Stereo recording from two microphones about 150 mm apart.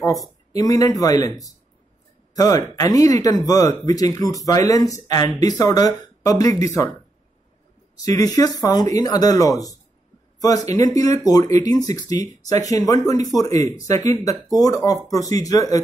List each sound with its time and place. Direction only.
0.0 s speech: 20° left (ahead or behind)
2.3 s speech: 25° left (ahead or behind)
7.9 s speech: 25° left (ahead or behind)